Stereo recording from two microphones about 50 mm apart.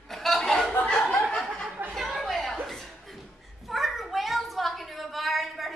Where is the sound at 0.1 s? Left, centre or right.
Centre.